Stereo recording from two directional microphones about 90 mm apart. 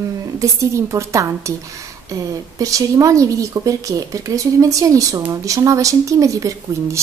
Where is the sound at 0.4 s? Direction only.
35° right (ahead or behind).